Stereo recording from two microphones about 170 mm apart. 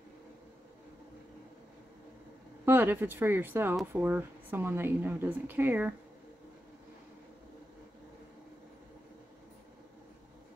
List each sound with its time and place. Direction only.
2.6 s speech: 10° right (ahead or behind)